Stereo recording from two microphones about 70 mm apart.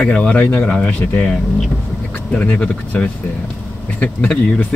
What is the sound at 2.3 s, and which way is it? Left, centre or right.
Speech, centre.